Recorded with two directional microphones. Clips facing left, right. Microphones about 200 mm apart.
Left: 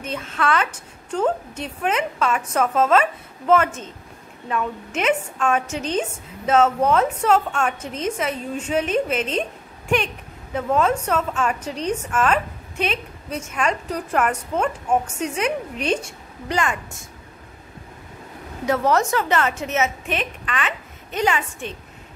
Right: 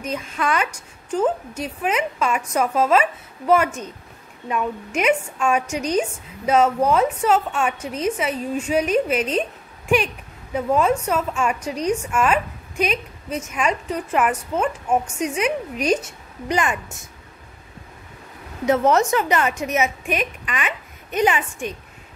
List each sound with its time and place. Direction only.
0.1 s a woman's voice: 15° right (ahead or behind)
10.5 s a woman's voice: 10° right (ahead or behind)
16.4 s a woman's voice: 15° right (ahead or behind)
18.7 s a woman's voice: 20° right (ahead or behind)